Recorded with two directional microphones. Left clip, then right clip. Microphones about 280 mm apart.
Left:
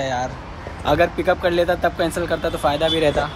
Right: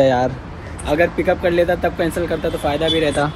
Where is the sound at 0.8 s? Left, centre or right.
Centre.